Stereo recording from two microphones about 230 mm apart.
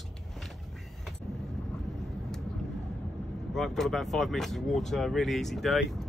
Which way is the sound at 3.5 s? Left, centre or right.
Centre.